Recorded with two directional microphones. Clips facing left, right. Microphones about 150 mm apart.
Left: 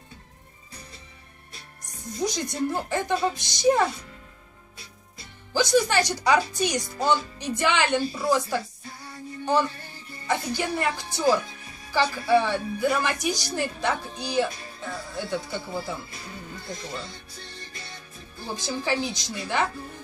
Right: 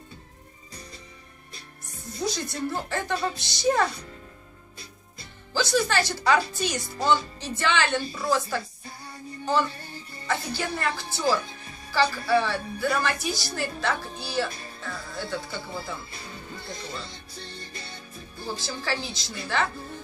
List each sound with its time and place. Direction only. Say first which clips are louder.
2.2 s a woman's voice: left 2 dB; 20° left (ahead or behind)
5.5 s a woman's voice: left 3 dB; 15° left (ahead or behind)
10.2 s a woman's voice: left 3 dB; 15° left (ahead or behind)
18.6 s a woman's voice: left 7 dB; 20° left (ahead or behind)